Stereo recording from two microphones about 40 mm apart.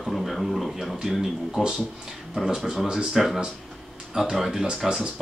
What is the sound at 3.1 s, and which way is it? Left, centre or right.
Speech, centre.